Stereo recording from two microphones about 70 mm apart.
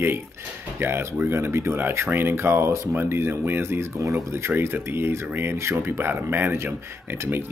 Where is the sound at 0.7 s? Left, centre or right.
Right.